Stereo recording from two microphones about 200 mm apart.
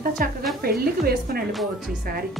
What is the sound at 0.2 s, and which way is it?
A woman's voice, 45° right (ahead or behind).